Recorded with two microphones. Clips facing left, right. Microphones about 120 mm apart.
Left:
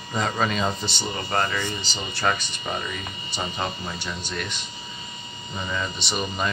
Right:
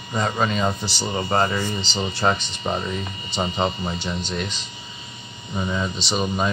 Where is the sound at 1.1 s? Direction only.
25° right (ahead or behind).